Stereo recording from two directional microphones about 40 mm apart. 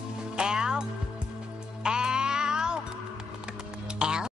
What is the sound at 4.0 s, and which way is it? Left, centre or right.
Music, centre.